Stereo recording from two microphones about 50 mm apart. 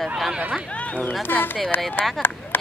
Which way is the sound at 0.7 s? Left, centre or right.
Left.